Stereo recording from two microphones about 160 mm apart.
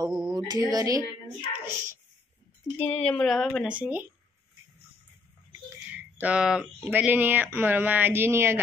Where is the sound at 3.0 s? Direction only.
5° left (ahead or behind); by 4.1 s 10° right (ahead or behind).